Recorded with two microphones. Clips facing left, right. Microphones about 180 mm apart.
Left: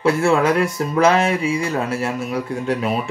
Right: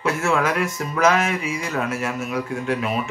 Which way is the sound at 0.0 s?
30° left (ahead or behind).